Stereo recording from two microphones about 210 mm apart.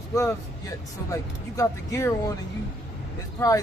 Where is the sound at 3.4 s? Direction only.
15° left (ahead or behind).